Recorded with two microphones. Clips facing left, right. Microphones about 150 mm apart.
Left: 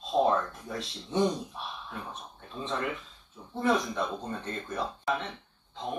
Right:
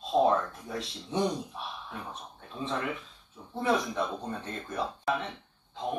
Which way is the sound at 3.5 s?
5° right (ahead or behind).